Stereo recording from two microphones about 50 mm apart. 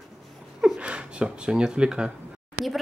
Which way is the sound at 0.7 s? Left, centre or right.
Right.